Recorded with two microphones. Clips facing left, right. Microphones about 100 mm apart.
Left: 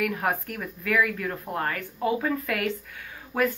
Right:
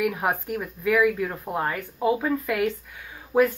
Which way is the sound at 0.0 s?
10° right (ahead or behind).